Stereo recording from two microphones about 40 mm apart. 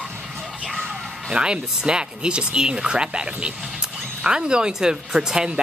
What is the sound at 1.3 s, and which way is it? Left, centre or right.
Speech, right.